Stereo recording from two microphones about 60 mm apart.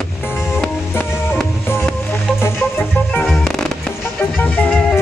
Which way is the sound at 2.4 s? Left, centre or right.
Left.